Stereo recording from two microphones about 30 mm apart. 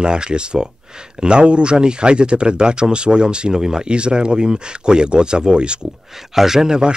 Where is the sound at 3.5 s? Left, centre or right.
Right.